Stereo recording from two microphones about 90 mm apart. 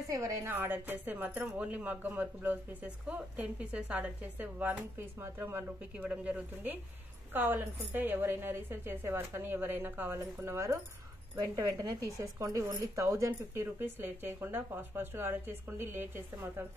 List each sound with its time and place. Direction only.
0.1 s speech: 35° right (ahead or behind)
5.9 s a woman's voice: 15° right (ahead or behind)